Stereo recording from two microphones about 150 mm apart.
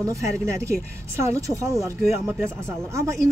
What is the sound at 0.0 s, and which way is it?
Speech, 20° right (ahead or behind).